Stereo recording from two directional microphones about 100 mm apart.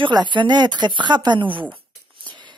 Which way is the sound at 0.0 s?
50° right (ahead or behind).